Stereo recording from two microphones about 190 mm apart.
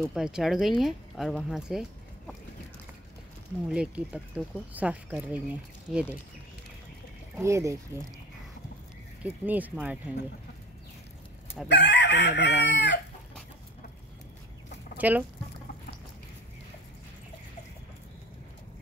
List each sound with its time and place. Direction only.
0.1 s speech: 5° right (ahead or behind)
3.6 s speech: 5° right (ahead or behind)
7.3 s speech: 15° right (ahead or behind)
9.2 s speech: 10° right (ahead or behind)
11.7 s chicken: 65° left (ahead or behind)
15.0 s speech: 10° right (ahead or behind)